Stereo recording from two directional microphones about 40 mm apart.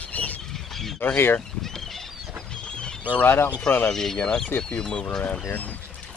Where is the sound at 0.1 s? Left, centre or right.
Left.